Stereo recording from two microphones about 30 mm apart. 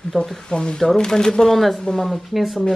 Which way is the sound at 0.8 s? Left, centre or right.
Centre.